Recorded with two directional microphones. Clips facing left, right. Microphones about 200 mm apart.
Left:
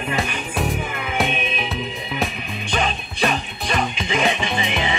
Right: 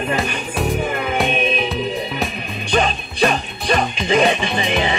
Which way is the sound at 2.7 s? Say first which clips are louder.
Right 5 dB; 40° right (ahead or behind).